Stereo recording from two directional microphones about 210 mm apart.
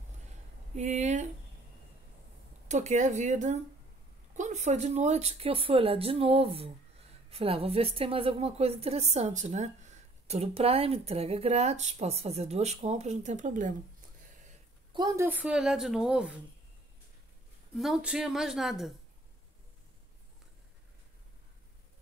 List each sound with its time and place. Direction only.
0.7 s speech: 35° right (ahead or behind)
2.7 s a woman's voice: 35° right (ahead or behind)
14.9 s a woman's voice: 20° right (ahead or behind); by 16.3 s 5° right (ahead or behind)
17.7 s a woman's voice: centre (ahead or behind)